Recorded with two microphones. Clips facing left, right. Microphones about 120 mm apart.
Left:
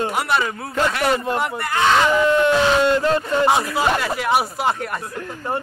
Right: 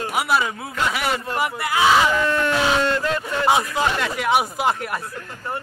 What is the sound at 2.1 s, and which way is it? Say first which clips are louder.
Speech: left 5 dB; 20° left (ahead or behind).